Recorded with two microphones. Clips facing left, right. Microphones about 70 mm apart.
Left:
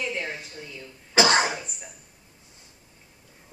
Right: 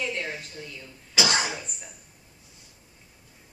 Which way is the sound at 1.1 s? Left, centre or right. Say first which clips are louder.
Left 5 dB; left.